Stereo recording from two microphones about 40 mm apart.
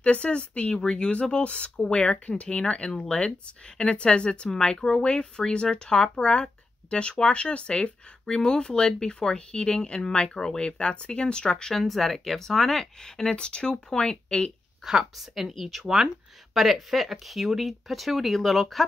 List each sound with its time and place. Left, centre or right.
0.0 s speech: left
11.7 s speech: centre
15.1 s speech: centre